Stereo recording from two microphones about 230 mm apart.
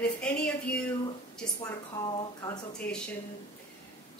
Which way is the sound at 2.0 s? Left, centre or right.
Centre.